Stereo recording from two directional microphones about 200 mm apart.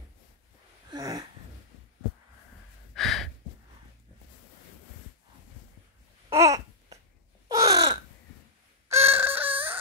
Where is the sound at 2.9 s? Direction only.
Centre (ahead or behind).